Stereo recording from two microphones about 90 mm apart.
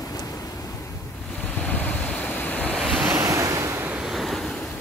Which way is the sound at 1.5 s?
15° left (ahead or behind).